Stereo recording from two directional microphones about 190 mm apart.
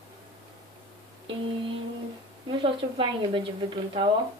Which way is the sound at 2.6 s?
25° right (ahead or behind).